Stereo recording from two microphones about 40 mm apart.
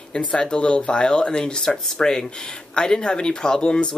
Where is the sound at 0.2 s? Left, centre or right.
Left.